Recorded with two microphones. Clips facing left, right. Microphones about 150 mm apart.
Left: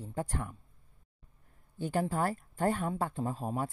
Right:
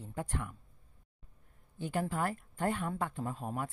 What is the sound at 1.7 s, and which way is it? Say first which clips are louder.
Speech: left 3 dB; 40° left (ahead or behind).